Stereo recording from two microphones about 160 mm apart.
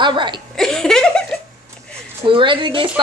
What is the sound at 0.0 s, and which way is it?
Speech, 30° right (ahead or behind).